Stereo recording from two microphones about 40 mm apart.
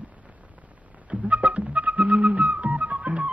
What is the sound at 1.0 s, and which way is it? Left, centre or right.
Flute, right.